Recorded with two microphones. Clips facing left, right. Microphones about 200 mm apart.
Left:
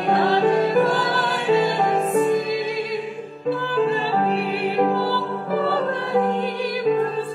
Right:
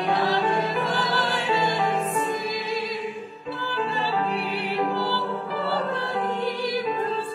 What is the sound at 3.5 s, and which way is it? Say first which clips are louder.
Music: left 9 dB; 50° left (ahead or behind).